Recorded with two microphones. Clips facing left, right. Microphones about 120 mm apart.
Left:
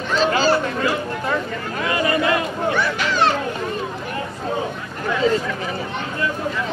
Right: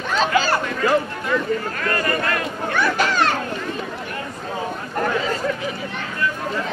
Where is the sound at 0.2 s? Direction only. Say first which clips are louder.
Left 1 dB; 35° left (ahead or behind).